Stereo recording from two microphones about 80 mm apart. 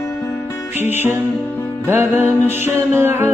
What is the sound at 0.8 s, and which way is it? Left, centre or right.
Music, right.